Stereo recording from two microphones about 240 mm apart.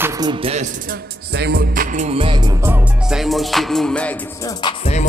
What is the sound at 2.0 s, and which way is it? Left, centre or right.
Music, right.